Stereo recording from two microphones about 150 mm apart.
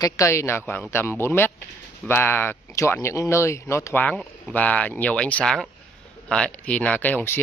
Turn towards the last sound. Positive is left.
turn(degrees=10)  # may be behind; listen again after turning